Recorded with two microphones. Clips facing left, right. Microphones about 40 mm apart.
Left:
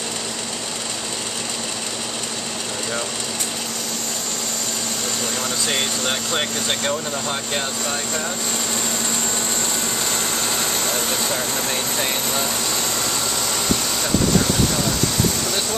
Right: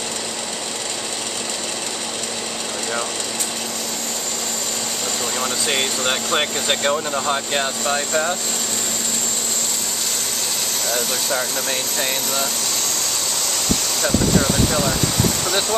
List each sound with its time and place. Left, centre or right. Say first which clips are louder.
5.4 s speech: right 3 dB; centre
11.7 s speech: even; centre
14.0 s speech: right 2 dB; centre